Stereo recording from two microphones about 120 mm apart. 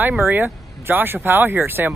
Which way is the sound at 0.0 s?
15° right (ahead or behind).